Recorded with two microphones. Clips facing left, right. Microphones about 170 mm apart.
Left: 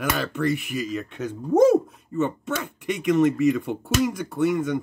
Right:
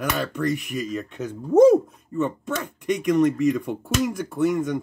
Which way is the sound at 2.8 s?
5° left (ahead or behind).